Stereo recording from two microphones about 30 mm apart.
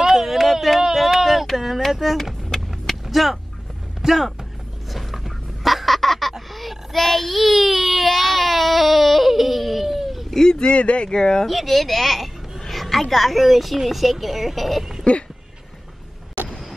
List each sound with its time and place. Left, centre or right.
0.0 s a sound: centre
3.1 s speech: centre
4.9 s bird: centre
5.9 s a sound: centre
6.5 s child singing: centre
10.3 s a sound: centre
10.6 s speech: left
11.1 s speech: left
11.4 s a woman's voice: centre